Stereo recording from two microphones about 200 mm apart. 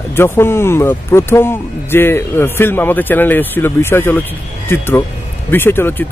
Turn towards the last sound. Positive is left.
turn(degrees=10)  # may be behind; listen again after turning